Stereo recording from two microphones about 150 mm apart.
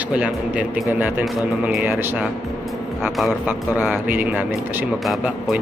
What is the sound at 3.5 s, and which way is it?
Speech, 10° right (ahead or behind).